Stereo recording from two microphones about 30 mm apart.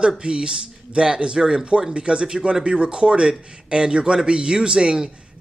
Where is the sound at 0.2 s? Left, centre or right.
Right.